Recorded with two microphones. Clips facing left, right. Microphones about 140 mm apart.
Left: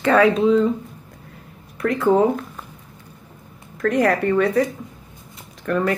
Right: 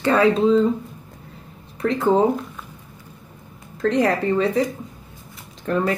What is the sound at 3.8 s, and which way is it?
Speech, 25° right (ahead or behind).